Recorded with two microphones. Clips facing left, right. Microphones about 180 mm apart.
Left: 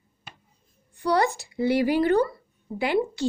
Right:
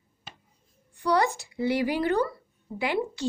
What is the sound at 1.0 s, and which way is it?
Speech, 35° left (ahead or behind).